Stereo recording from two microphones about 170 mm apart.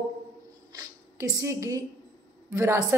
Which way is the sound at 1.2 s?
20° right (ahead or behind).